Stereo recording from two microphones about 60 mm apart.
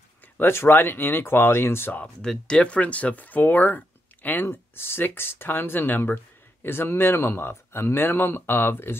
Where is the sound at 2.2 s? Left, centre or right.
Centre.